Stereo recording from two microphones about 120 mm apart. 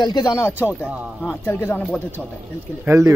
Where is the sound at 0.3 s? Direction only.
20° left (ahead or behind).